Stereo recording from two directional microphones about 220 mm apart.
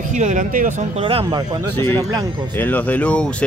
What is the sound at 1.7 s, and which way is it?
Speech, 10° left (ahead or behind).